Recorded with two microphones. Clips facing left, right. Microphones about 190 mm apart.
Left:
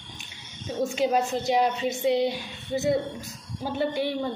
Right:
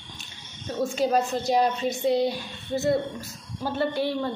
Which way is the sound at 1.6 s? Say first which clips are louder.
Even; 15° left (ahead or behind).